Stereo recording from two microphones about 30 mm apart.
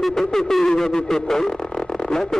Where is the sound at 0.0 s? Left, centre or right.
Centre.